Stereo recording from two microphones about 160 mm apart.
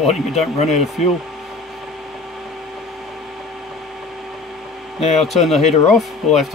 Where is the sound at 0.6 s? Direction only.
45° left (ahead or behind).